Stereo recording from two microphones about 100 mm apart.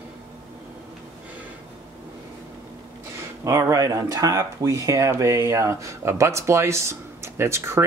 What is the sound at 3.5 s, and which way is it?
Speech, 30° right (ahead or behind).